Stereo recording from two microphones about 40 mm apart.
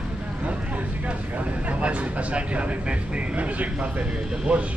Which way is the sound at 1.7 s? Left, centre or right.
Right.